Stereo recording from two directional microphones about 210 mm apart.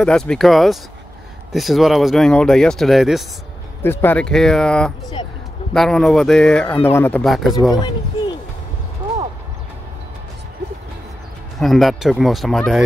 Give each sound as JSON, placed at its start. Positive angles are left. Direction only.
{"t": 0.0, "sound": "speech", "side_deg": 5}
{"t": 3.8, "sound": "speech", "side_deg": 10}
{"t": 7.7, "sound": "a sound", "side_deg": 20}
{"t": 11.6, "sound": "speech", "side_deg": 0}